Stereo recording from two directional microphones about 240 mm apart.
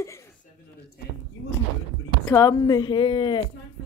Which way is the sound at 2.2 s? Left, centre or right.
Centre.